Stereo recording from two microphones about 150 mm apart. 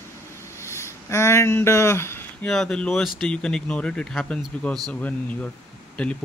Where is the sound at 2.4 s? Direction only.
5° left (ahead or behind).